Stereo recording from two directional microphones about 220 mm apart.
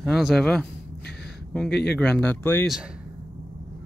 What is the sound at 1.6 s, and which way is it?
Speech, 50° left (ahead or behind).